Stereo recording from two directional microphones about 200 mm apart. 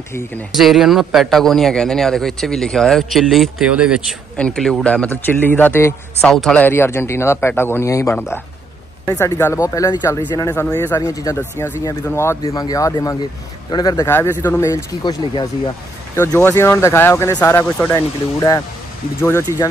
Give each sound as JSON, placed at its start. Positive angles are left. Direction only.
{"t": 0.5, "sound": "a man's voice", "side_deg": 0}